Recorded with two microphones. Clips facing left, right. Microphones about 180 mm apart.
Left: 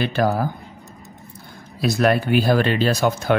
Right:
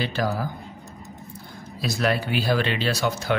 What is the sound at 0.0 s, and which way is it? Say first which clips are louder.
Speech: left 6 dB; 55° left (ahead or behind).